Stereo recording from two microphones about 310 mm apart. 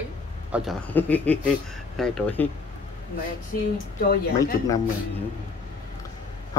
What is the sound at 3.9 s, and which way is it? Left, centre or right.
Speech, left.